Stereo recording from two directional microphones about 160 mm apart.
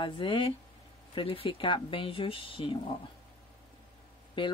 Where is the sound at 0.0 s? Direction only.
30° left (ahead or behind).